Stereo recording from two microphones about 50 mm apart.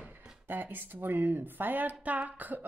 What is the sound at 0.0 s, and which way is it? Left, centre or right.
Speech, right.